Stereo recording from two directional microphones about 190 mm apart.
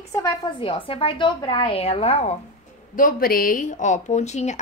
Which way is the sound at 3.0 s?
50° left (ahead or behind).